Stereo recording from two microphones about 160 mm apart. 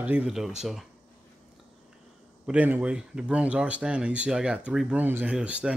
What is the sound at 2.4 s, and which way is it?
Speech, 10° right (ahead or behind).